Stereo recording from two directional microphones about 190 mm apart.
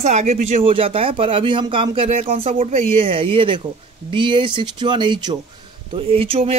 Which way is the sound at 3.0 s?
30° right (ahead or behind).